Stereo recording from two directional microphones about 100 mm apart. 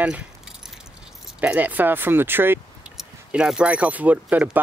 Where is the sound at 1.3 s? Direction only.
15° right (ahead or behind).